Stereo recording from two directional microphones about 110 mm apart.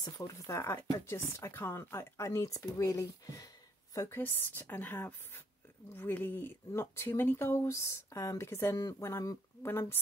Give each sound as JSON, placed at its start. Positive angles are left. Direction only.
{"t": 0.0, "sound": "speech", "side_deg": 30}